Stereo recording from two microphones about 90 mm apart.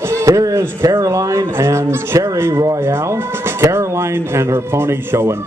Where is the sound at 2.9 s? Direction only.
30° right (ahead or behind).